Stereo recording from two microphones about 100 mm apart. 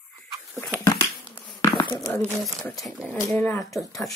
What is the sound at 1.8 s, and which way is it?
Crumpling, 25° left (ahead or behind).